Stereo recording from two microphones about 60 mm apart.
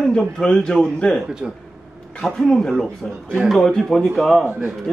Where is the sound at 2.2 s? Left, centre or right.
Centre.